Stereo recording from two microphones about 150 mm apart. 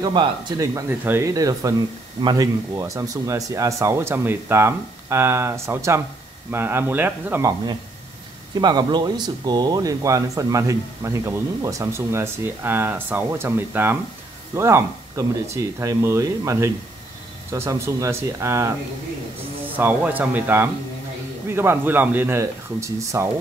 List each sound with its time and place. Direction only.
0.0 s speech: 30° right (ahead or behind); by 7.5 s 15° right (ahead or behind)
8.5 s speech: 30° right (ahead or behind)
19.8 s speech: 10° right (ahead or behind)